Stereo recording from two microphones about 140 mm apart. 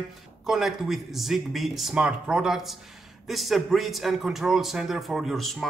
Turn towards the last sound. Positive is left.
turn(degrees=0)  # may be behind; listen again after turning